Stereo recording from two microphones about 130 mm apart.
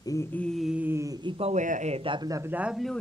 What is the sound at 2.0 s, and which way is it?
Speech, 30° right (ahead or behind).